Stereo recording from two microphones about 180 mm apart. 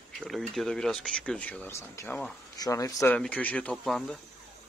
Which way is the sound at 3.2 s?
5° left (ahead or behind).